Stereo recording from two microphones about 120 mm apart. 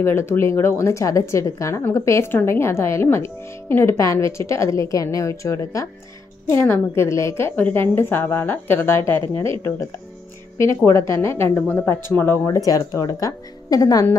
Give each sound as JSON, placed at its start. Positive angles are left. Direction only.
{"t": 0.0, "sound": "speech", "side_deg": 20}
{"t": 10.9, "sound": "speech", "side_deg": 25}